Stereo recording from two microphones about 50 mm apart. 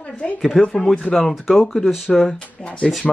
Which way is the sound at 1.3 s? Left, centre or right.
Centre.